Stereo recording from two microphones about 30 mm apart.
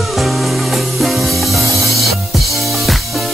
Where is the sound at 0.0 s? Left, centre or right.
Centre.